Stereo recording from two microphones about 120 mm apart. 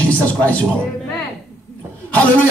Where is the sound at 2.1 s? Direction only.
15° left (ahead or behind).